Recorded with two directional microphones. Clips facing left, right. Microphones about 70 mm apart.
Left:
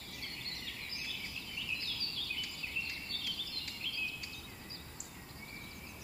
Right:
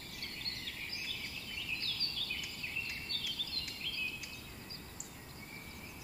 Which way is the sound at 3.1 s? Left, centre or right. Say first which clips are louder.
Right 1 dB; right.